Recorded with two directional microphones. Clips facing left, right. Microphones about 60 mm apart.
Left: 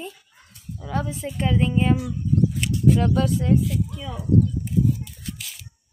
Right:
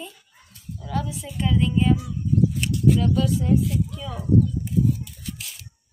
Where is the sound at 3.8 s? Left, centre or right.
Centre.